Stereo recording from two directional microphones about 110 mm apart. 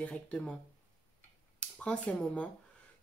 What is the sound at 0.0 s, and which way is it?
Speech, 10° left (ahead or behind).